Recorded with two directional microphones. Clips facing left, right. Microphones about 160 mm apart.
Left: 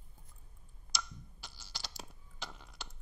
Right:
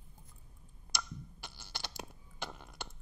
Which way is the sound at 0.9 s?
55° right (ahead or behind).